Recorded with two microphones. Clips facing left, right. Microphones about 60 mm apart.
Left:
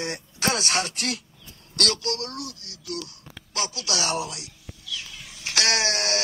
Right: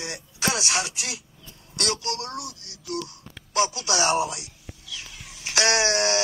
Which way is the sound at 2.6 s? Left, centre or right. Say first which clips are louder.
Right 1 dB; left.